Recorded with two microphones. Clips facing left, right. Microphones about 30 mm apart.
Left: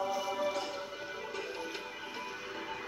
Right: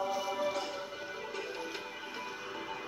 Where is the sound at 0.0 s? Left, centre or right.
Centre.